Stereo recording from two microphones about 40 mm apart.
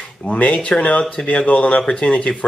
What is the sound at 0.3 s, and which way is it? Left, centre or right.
Speech, left.